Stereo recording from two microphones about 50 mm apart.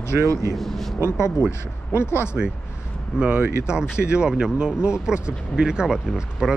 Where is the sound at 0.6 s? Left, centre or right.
Centre.